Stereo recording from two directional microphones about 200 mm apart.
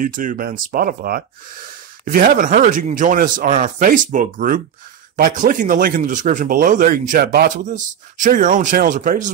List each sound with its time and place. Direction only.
0.0 s speech: 40° right (ahead or behind)